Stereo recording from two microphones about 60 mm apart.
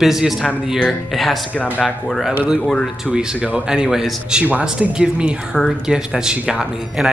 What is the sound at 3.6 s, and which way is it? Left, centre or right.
Speech, centre.